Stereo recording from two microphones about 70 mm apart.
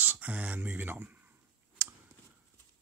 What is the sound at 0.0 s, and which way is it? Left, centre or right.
Speech, right.